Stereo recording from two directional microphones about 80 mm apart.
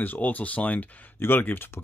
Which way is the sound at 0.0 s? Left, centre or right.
Left.